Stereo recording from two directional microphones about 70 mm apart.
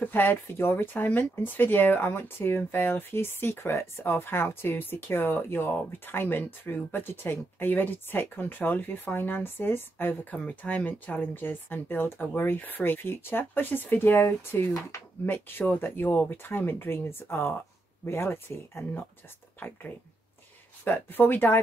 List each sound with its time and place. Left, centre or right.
0.1 s speech: left
14.7 s speech: left
15.2 s speech: left
20.8 s speech: left